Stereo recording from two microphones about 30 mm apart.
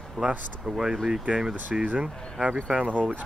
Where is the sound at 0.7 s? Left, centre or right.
Right.